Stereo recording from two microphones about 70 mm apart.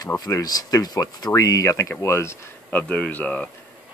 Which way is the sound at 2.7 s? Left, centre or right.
Centre.